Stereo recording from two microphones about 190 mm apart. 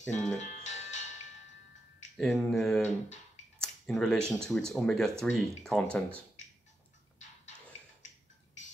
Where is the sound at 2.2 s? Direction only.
Centre (ahead or behind).